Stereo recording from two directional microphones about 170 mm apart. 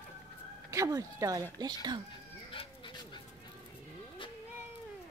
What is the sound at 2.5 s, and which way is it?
Cat, 30° left (ahead or behind).